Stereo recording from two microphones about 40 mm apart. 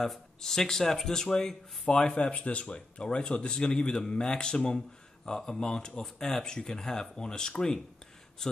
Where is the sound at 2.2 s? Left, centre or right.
Left.